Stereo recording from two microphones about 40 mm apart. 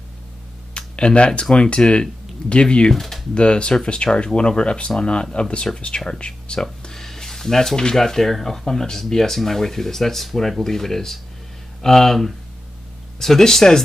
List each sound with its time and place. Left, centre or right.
0.7 s a sound: left
1.4 s speech: left
2.9 s speech: centre
3.3 s speech: left; by 13.8 s centre